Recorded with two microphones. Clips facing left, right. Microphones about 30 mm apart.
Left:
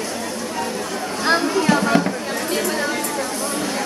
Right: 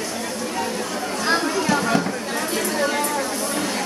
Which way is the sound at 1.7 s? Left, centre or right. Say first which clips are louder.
Left 3 dB; centre.